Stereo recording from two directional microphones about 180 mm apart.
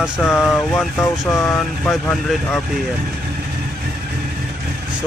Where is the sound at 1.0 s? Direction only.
15° left (ahead or behind).